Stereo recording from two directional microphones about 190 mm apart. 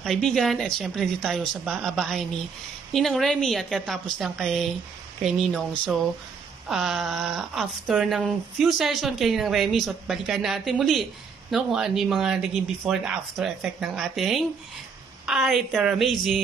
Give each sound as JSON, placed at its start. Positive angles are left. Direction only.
{"t": 0.0, "sound": "speech", "side_deg": 0}